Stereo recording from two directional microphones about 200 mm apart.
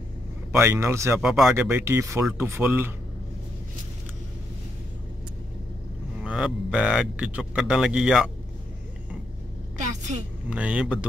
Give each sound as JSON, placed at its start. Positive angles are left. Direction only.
{"t": 0.5, "sound": "speech", "side_deg": -15}
{"t": 1.2, "sound": "a man's voice", "side_deg": 0}
{"t": 6.2, "sound": "a man's voice", "side_deg": -5}
{"t": 9.8, "sound": "vehicle", "side_deg": -35}
{"t": 10.5, "sound": "a man's voice", "side_deg": -5}